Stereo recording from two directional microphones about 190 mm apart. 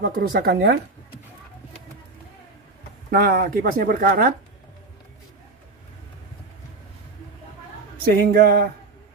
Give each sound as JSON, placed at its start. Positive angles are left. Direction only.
{"t": 0.0, "sound": "speech", "side_deg": -50}
{"t": 3.1, "sound": "speech", "side_deg": -55}
{"t": 8.0, "sound": "speech", "side_deg": -55}